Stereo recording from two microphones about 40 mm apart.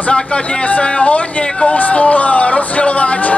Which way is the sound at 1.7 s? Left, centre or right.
Left.